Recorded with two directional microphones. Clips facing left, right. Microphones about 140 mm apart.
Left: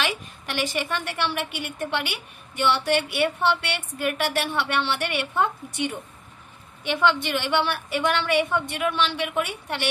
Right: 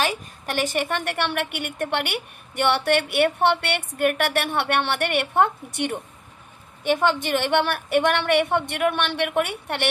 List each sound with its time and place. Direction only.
0.0 s a woman's voice: 45° right (ahead or behind); by 5.9 s 60° right (ahead or behind)
6.8 s a woman's voice: 45° right (ahead or behind)